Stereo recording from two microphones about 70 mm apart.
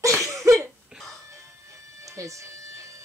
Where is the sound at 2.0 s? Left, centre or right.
Right.